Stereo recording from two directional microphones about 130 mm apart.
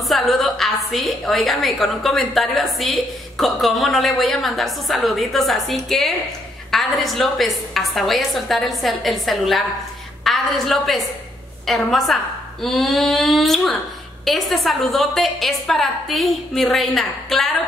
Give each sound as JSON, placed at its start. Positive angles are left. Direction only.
{"t": 0.1, "sound": "a woman's voice", "side_deg": 0}